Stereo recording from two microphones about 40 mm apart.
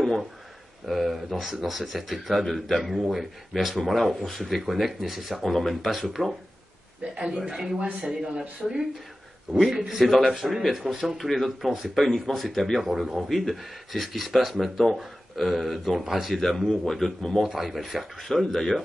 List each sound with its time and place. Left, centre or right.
0.8 s speech: centre
7.4 s speech: centre
16.3 s a man's voice: centre
17.4 s speech: centre
18.3 s a man's voice: centre